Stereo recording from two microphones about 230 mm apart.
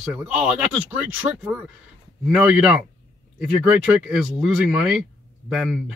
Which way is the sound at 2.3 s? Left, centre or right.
Centre.